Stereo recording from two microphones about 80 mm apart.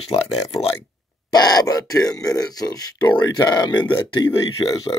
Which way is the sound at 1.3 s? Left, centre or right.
Left.